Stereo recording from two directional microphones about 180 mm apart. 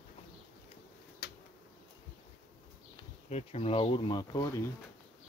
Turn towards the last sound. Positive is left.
turn(degrees=20)  # may be behind; listen again after turning